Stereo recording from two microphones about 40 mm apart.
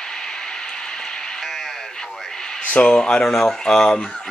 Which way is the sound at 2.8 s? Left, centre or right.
Left.